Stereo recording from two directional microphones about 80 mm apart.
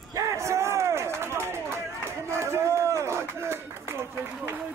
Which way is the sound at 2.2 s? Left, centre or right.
Right.